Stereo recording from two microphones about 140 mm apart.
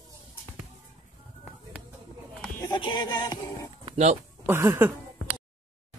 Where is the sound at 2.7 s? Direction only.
35° left (ahead or behind).